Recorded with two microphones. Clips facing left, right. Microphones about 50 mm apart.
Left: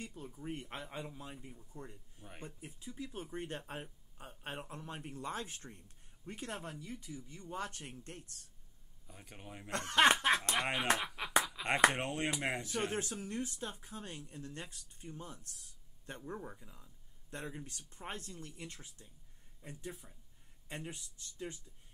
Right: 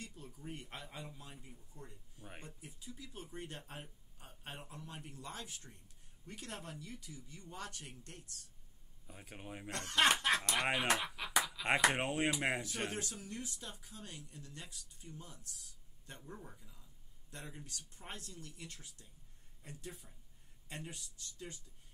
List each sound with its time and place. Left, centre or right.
0.0 s speech: left
6.2 s speech: left
9.0 s speech: centre
9.7 s speech: left
10.6 s speech: centre
11.2 s a sound: centre
11.9 s speech: centre
12.9 s speech: left